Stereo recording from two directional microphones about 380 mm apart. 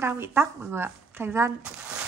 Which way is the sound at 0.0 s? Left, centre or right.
Centre.